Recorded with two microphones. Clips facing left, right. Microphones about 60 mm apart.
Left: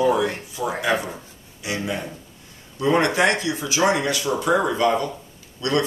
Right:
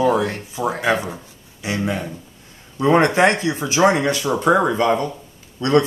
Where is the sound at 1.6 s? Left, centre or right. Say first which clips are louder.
Right 4 dB; right.